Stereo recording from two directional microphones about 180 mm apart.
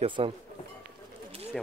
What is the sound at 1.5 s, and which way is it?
Speech, centre (ahead or behind).